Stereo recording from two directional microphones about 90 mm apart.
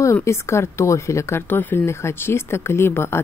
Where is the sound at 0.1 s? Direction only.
30° left (ahead or behind).